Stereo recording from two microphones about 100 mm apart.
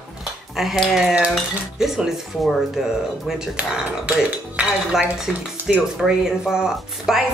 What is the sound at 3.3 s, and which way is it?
Speech, 5° right (ahead or behind).